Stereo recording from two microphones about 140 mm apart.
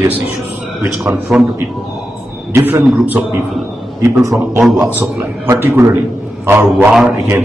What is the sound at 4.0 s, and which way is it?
Speech, 20° right (ahead or behind).